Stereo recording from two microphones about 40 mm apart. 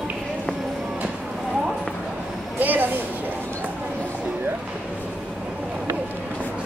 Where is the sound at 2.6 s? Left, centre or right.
Right.